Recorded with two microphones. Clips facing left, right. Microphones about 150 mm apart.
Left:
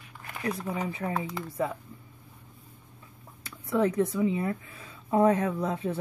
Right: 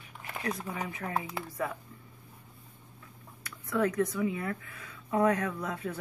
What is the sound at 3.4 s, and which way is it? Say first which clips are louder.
Speech: left 3 dB; 25° left (ahead or behind).